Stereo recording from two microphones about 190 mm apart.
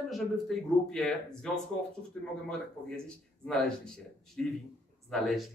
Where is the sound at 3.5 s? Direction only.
5° left (ahead or behind).